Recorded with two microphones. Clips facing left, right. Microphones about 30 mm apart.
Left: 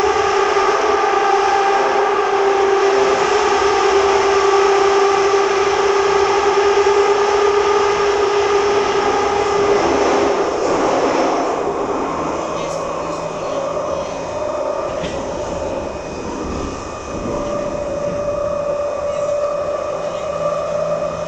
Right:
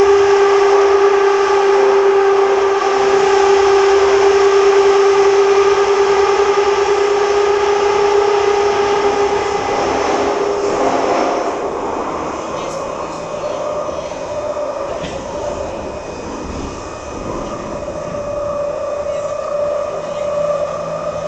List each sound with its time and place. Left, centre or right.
0.0 s civil defense siren: centre